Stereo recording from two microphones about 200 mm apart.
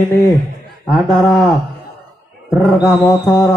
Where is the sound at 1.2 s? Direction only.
Centre (ahead or behind).